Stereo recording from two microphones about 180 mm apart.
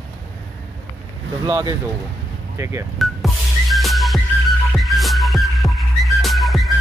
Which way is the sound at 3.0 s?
Centre (ahead or behind).